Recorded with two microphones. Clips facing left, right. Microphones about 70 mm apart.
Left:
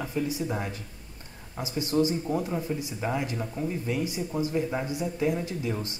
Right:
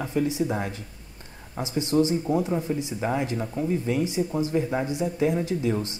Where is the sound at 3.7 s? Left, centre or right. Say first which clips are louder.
Right 7 dB; right.